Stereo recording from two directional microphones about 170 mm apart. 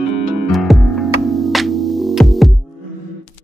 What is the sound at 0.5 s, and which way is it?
Music, centre (ahead or behind).